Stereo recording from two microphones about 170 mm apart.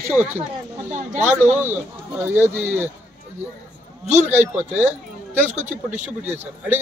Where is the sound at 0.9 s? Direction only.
45° right (ahead or behind).